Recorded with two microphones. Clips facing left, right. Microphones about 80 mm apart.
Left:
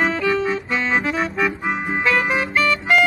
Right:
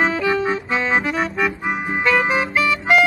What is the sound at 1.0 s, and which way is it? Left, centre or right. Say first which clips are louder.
Music: even; centre.